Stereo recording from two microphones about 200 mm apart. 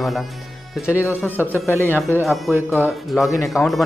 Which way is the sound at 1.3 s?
10° left (ahead or behind).